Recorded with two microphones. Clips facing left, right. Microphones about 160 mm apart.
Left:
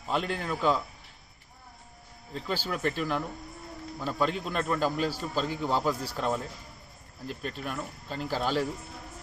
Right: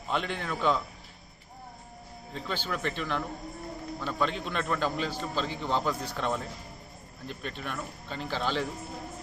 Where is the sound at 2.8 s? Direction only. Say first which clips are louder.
Left 3 dB; 40° left (ahead or behind).